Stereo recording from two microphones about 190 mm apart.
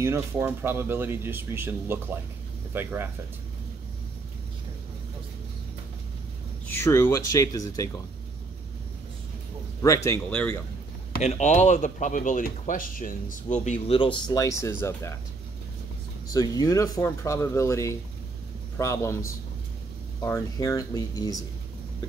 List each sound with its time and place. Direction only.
0.0 s speech: 10° right (ahead or behind)
6.7 s speech: 15° left (ahead or behind)
9.8 s speech: 15° left (ahead or behind)
11.2 s speech: 35° left (ahead or behind)
13.9 s speech: 25° left (ahead or behind)
16.3 s speech: 20° left (ahead or behind)